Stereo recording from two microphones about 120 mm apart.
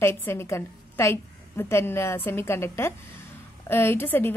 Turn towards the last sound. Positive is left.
turn(degrees=20)  # may be behind; listen again after turning